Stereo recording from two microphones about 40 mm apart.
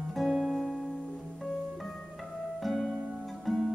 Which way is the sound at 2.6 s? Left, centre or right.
Centre.